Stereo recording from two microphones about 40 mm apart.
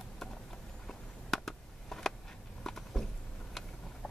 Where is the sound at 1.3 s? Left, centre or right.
Centre.